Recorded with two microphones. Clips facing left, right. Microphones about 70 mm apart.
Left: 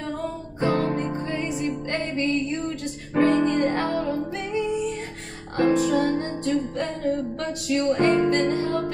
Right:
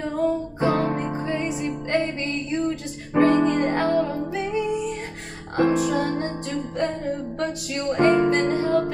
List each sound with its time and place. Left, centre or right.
0.2 s music: centre